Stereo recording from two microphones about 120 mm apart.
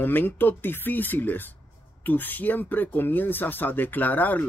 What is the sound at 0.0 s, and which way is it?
Speech, 15° left (ahead or behind).